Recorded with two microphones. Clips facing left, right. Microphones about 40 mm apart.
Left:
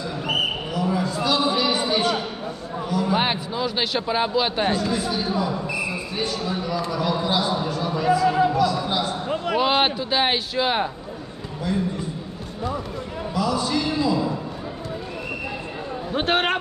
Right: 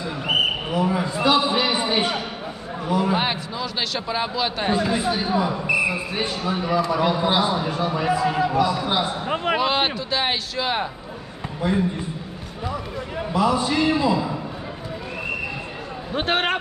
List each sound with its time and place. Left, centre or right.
0.0 s a sound: right
3.2 s a man's voice: centre
4.7 s a man's voice: right
9.6 s speech: centre
11.6 s a man's voice: right
13.3 s a man's voice: right
16.1 s a man's voice: centre